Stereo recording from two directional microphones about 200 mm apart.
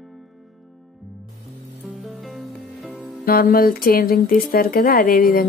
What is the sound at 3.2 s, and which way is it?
Speech, 45° left (ahead or behind).